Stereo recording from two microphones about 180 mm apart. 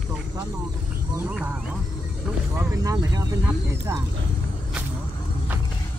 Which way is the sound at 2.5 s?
15° right (ahead or behind).